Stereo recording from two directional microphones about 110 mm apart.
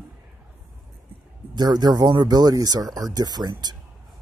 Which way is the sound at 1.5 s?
40° right (ahead or behind).